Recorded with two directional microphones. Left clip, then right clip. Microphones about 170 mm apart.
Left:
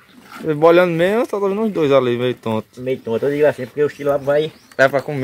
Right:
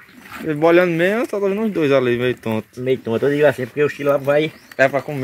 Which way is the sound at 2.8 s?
50° right (ahead or behind).